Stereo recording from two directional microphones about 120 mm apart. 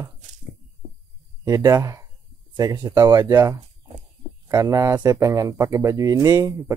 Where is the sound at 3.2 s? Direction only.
25° right (ahead or behind).